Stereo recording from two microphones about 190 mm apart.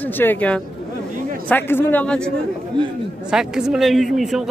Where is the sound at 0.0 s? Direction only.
10° left (ahead or behind).